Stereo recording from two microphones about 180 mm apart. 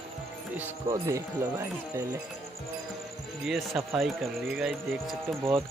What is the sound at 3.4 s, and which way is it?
Speech, centre (ahead or behind).